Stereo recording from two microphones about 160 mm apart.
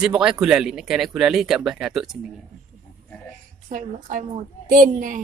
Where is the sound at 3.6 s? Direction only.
55° right (ahead or behind).